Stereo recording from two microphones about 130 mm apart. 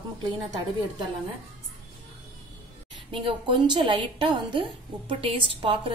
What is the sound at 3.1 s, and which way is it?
A woman's voice, 40° right (ahead or behind).